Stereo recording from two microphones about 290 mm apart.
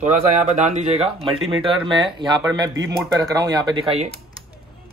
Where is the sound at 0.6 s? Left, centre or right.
Right.